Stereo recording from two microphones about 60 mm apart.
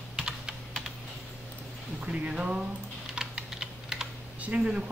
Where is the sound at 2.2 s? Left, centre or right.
Centre.